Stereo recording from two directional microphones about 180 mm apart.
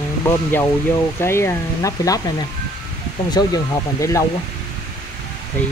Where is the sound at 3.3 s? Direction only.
20° left (ahead or behind).